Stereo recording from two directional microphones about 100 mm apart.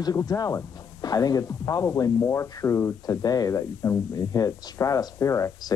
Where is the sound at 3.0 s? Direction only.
40° left (ahead or behind).